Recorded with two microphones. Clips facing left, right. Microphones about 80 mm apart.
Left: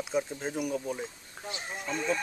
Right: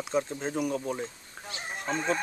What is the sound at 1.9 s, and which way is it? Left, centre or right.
Speech, right.